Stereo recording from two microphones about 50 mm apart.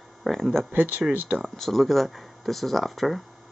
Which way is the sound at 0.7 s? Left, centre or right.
Right.